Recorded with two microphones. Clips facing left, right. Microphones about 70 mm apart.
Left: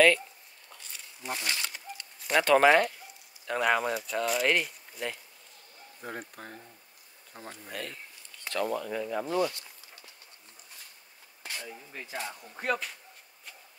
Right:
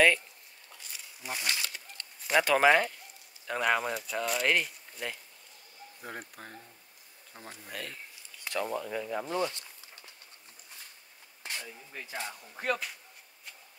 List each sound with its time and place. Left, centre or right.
0.7 s a sound: centre
1.5 s bird: centre
2.3 s speech: centre
8.5 s speech: centre
9.3 s speech: right
11.9 s speech: centre